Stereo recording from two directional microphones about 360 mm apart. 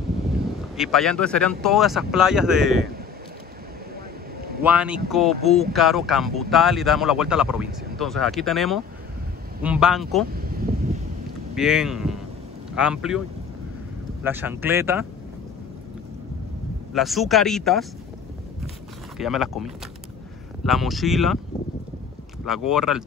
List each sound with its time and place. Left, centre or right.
0.7 s speech: centre
4.4 s a sound: right
4.6 s speech: centre
10.3 s a sound: right
11.5 s speech: centre
14.2 s speech: centre
16.9 s speech: centre
19.1 s speech: centre
22.4 s speech: centre